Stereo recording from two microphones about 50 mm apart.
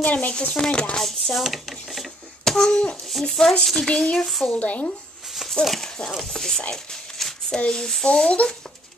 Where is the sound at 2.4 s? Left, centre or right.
Centre.